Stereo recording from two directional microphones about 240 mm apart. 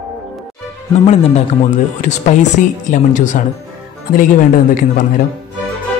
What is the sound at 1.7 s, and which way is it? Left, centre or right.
Speech, left.